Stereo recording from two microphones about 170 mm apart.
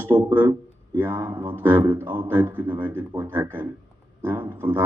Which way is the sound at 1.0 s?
15° right (ahead or behind).